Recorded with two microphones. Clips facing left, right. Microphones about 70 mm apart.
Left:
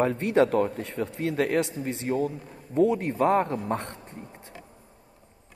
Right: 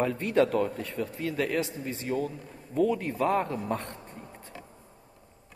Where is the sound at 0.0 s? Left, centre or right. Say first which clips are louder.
Left 3 dB; left.